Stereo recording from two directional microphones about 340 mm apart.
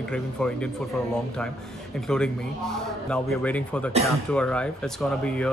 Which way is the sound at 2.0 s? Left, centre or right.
Centre.